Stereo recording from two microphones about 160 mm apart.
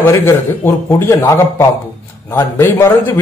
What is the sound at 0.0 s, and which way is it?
A man's voice, 15° left (ahead or behind).